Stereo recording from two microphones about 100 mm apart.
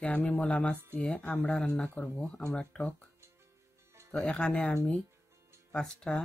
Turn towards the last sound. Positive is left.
turn(degrees=5)  # may be behind; listen again after turning